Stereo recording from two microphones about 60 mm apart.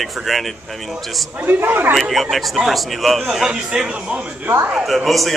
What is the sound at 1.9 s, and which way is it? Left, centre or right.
A man's voice, centre.